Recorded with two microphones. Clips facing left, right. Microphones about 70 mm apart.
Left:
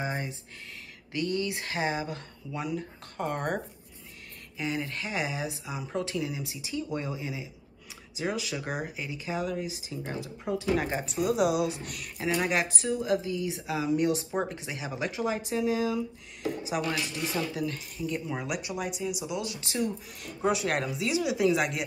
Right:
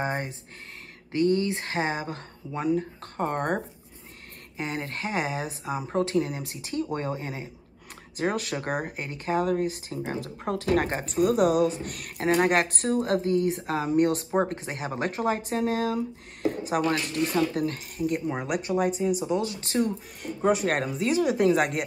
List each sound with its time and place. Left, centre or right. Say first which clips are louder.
0.0 s speech: right 4 dB; right